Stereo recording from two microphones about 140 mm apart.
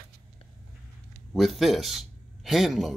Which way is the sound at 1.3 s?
Centre (ahead or behind).